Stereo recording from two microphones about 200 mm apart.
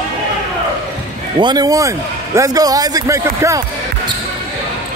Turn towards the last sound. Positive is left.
turn(degrees=-15)  # may be behind; listen again after turning